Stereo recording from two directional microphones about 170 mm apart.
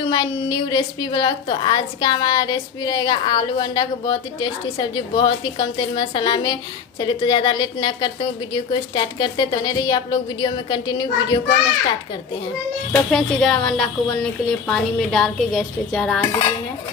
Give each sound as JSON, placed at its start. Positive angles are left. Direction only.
{"t": 0.0, "sound": "a woman's voice", "side_deg": 25}
{"t": 13.1, "sound": "a woman's voice", "side_deg": 5}
{"t": 16.3, "sound": "a woman's voice", "side_deg": 25}